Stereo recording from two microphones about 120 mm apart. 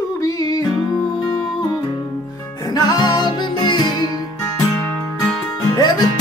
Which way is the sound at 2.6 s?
35° left (ahead or behind).